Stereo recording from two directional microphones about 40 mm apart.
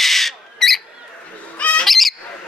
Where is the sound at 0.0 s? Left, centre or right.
Centre.